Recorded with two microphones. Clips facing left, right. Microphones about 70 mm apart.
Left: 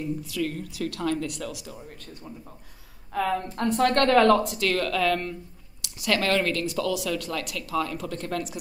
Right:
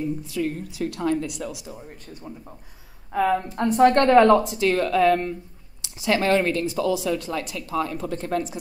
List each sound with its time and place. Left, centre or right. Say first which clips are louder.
0.2 s speech: right 3 dB; right